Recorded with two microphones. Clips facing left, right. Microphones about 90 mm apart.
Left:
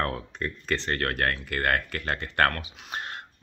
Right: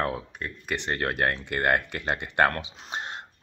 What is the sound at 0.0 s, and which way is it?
Speech, 10° right (ahead or behind).